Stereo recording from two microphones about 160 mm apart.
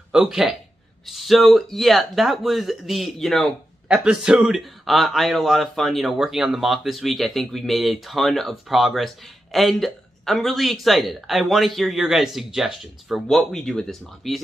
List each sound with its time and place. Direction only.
0.1 s a man's voice: 5° right (ahead or behind)